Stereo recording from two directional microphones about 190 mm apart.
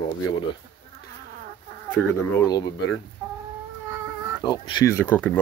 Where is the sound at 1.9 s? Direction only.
20° left (ahead or behind).